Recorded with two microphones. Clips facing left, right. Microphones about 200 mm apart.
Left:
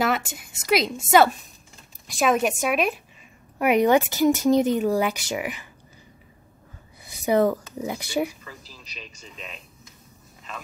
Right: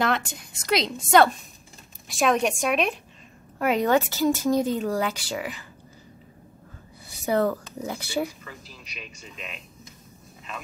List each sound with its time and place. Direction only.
0.0 s speech: 5° left (ahead or behind)
7.1 s speech: 15° left (ahead or behind)